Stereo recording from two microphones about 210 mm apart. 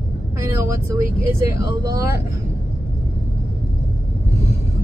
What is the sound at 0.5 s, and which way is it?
Speech, 15° right (ahead or behind).